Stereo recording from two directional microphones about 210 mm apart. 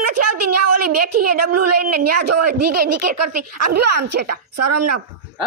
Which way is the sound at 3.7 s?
50° right (ahead or behind).